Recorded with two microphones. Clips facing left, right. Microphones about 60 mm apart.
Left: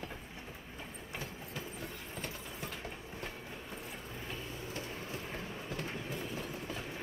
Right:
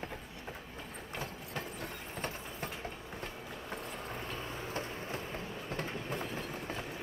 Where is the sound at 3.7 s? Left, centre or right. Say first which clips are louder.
Right 4 dB; right.